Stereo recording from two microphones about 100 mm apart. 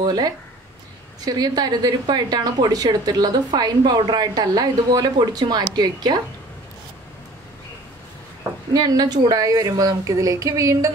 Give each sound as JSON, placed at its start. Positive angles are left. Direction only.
{"t": 0.0, "sound": "a woman's voice", "side_deg": -45}
{"t": 8.7, "sound": "a woman's voice", "side_deg": -40}